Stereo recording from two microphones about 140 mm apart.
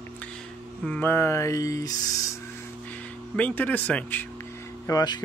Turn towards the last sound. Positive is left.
turn(degrees=30)  # may be behind; listen again after turning